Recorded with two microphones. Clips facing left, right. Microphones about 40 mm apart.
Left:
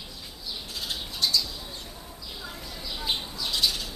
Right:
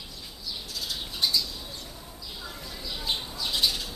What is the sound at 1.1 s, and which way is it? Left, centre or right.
Squawk, centre.